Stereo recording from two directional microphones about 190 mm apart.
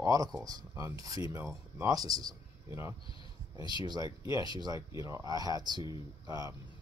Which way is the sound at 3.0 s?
25° left (ahead or behind).